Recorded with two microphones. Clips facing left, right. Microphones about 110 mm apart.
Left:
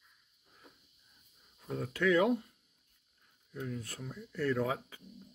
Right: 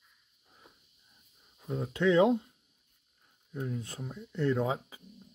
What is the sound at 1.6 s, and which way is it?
Speech, 20° right (ahead or behind).